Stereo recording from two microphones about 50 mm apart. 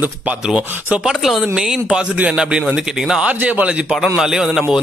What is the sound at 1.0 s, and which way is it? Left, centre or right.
Speech, centre.